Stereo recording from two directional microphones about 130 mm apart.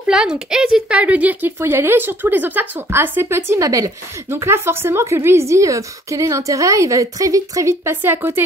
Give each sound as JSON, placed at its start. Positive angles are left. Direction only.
{"t": 0.1, "sound": "a woman's voice", "side_deg": -5}